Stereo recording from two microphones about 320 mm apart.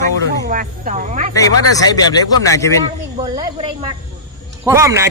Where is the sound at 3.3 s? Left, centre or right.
Centre.